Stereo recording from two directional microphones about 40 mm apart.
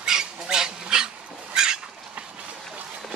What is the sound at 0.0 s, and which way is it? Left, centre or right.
Dog, centre.